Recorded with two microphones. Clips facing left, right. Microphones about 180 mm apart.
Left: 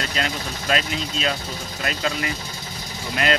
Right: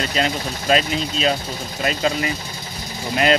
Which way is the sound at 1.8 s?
20° right (ahead or behind).